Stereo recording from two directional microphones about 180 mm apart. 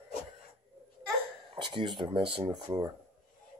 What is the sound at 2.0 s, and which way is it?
Speech, 25° right (ahead or behind).